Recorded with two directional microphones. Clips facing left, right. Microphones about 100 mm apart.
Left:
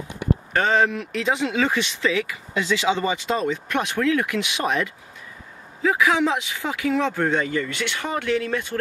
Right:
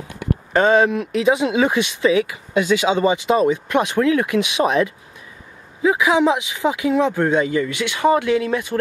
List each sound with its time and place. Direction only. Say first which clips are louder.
0.5 s speech: right 6 dB; 20° right (ahead or behind)